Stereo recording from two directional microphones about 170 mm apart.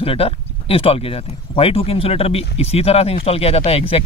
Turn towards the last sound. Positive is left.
turn(degrees=35)  # may be behind; listen again after turning